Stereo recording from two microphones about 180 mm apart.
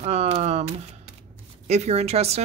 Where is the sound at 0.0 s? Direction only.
35° right (ahead or behind).